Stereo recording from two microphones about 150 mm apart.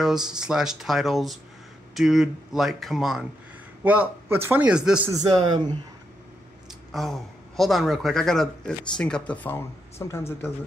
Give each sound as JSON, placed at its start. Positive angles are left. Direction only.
{"t": 0.4, "sound": "a man's voice", "side_deg": -5}
{"t": 5.1, "sound": "a man's voice", "side_deg": -25}
{"t": 6.9, "sound": "speech", "side_deg": 0}